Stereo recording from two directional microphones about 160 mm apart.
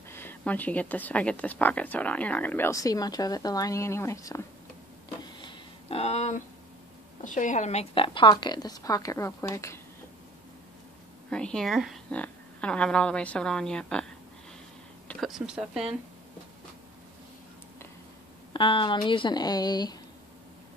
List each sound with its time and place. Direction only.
0.1 s a woman's voice: 15° left (ahead or behind)
5.2 s a sound: 30° left (ahead or behind)
7.2 s a woman's voice: 50° left (ahead or behind); by 9.8 s 20° left (ahead or behind)
11.2 s speech: 5° left (ahead or behind)
15.0 s speech: centre (ahead or behind)
18.5 s a woman's voice: 30° left (ahead or behind)